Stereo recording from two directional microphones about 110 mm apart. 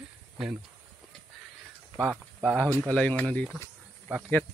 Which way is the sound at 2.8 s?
10° left (ahead or behind).